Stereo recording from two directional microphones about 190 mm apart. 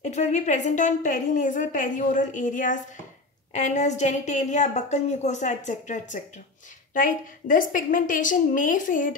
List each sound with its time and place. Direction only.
0.0 s a woman's voice: 40° left (ahead or behind)